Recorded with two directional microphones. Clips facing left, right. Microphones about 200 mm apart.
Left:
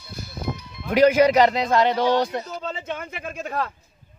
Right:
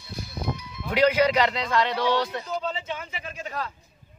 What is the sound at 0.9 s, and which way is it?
Speech, 45° left (ahead or behind).